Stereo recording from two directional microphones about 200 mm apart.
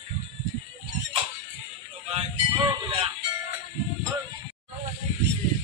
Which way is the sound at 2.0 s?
30° right (ahead or behind).